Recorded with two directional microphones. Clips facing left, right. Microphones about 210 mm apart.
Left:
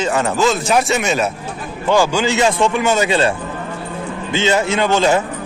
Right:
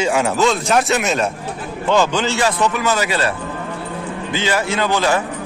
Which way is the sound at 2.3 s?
25° left (ahead or behind).